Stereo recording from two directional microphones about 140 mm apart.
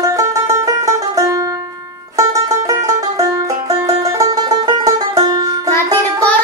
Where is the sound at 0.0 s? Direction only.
25° right (ahead or behind).